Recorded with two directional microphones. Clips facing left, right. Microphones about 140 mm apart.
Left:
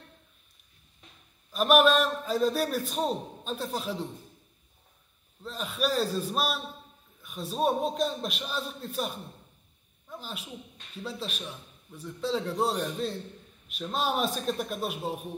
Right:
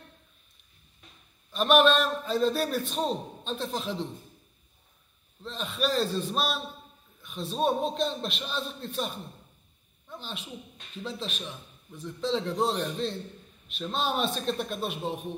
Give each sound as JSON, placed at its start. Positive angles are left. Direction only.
{"t": 1.5, "sound": "a man's voice", "side_deg": 10}
{"t": 5.4, "sound": "a man's voice", "side_deg": 10}
{"t": 10.0, "sound": "a sound", "side_deg": 10}
{"t": 11.0, "sound": "a man's voice", "side_deg": 5}